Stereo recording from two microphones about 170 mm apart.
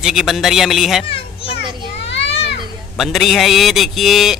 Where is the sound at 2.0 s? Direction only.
90° left.